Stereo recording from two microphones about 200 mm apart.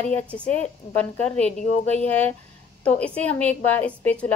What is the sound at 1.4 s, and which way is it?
Speech, 35° left (ahead or behind).